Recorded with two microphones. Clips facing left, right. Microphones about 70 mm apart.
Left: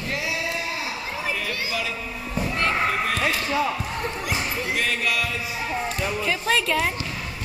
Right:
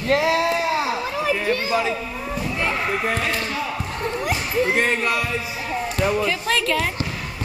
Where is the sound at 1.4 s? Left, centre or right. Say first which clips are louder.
Right 7 dB; right.